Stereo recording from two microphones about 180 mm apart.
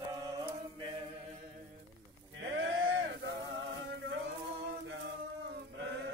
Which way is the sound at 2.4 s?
90° right.